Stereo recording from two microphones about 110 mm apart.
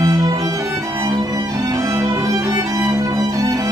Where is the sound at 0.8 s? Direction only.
30° right (ahead or behind).